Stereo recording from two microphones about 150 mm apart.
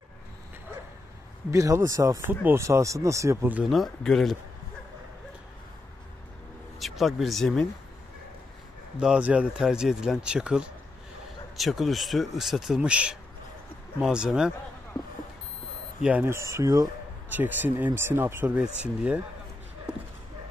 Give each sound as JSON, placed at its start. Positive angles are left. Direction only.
{"t": 1.5, "sound": "speech", "side_deg": -20}
{"t": 3.7, "sound": "speech", "side_deg": 0}
{"t": 6.8, "sound": "speech", "side_deg": 0}
{"t": 8.9, "sound": "speech", "side_deg": -5}
{"t": 16.0, "sound": "speech", "side_deg": -10}
{"t": 19.9, "sound": "dog", "side_deg": -5}